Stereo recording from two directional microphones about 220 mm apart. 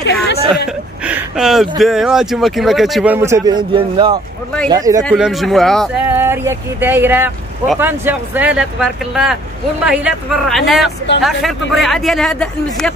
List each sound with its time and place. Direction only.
1.0 s speech: 5° right (ahead or behind)
5.0 s speech: centre (ahead or behind)
6.0 s speech: 10° right (ahead or behind)